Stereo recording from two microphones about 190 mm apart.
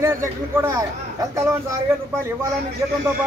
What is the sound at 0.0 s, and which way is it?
A man's voice, 15° right (ahead or behind).